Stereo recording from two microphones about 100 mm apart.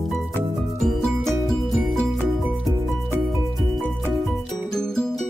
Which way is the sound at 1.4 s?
Centre (ahead or behind).